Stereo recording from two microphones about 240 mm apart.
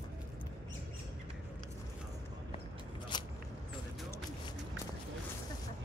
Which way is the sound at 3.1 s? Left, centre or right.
Centre.